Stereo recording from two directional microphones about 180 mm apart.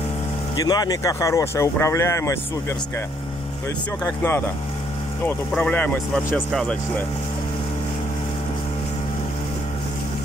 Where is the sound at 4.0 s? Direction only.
15° left (ahead or behind).